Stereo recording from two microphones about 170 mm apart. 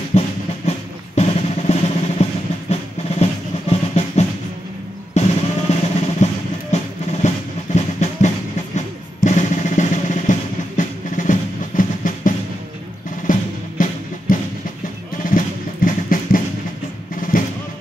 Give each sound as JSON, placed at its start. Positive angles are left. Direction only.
{"t": 0.1, "sound": "drum", "side_deg": 40}
{"t": 6.7, "sound": "music", "side_deg": 40}
{"t": 8.7, "sound": "drum", "side_deg": 45}
{"t": 10.8, "sound": "music", "side_deg": 50}
{"t": 14.3, "sound": "a sound", "side_deg": 55}
{"t": 15.2, "sound": "music", "side_deg": 55}